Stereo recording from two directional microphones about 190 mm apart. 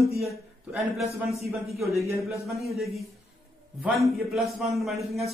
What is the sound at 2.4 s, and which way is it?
Speech, centre (ahead or behind).